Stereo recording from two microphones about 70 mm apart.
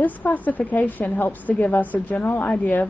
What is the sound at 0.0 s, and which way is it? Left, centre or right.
A woman's voice, left.